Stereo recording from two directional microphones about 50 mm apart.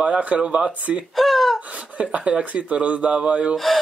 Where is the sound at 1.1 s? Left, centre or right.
Centre.